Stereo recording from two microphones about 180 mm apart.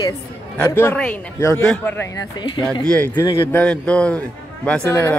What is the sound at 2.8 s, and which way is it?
Speech, 5° left (ahead or behind).